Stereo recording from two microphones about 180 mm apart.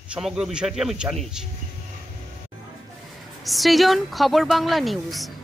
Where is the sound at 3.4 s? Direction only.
Centre (ahead or behind).